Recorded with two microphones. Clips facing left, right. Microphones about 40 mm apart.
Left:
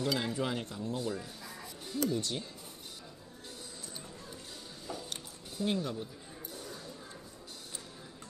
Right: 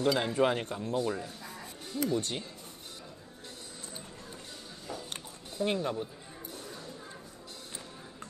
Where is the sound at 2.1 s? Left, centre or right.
Right.